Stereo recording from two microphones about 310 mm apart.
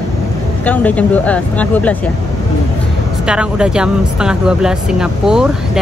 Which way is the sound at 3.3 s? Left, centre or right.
Centre.